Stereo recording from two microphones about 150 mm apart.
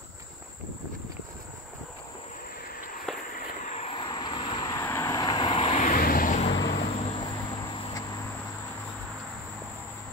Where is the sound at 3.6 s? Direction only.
50° left (ahead or behind).